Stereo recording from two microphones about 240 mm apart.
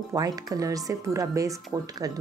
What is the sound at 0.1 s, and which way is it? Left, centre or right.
A woman's voice, centre.